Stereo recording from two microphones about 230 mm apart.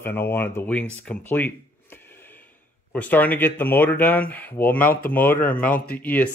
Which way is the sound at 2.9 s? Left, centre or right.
Centre.